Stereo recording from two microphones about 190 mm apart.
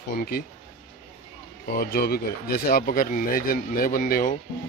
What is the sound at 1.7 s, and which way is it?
Speech, 55° left (ahead or behind).